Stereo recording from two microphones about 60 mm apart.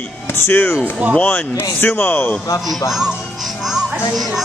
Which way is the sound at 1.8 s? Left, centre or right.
Left.